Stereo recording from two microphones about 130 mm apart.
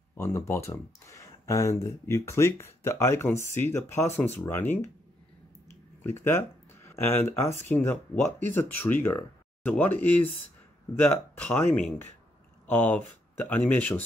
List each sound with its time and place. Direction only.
0.1 s speech: 20° left (ahead or behind)
6.0 s speech: 20° left (ahead or behind)